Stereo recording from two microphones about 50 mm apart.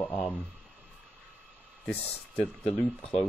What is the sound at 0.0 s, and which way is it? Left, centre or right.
Speech, left.